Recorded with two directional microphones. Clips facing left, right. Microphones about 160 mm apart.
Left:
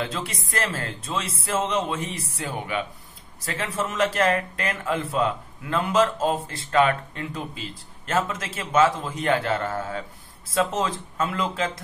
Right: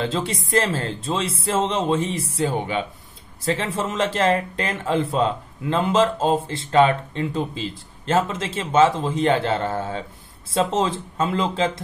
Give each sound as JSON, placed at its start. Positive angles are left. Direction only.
{"t": 0.0, "sound": "speech", "side_deg": -25}